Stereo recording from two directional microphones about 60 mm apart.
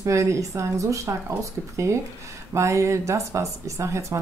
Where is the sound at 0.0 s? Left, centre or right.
Right.